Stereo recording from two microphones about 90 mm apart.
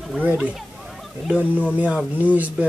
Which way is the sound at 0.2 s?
15° right (ahead or behind).